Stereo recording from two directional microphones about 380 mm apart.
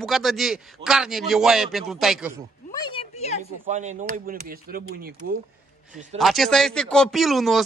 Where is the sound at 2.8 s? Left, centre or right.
Centre.